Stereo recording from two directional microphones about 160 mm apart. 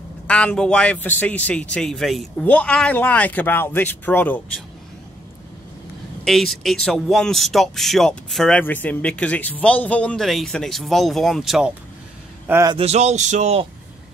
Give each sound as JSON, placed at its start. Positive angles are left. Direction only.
{"t": 0.3, "sound": "a man's voice", "side_deg": 5}
{"t": 6.2, "sound": "speech", "side_deg": 0}
{"t": 12.4, "sound": "a man's voice", "side_deg": -15}
{"t": 12.7, "sound": "speech", "side_deg": -40}